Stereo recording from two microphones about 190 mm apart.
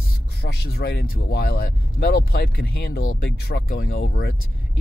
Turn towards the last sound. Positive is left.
turn(degrees=55)  # may be behind; listen again after turning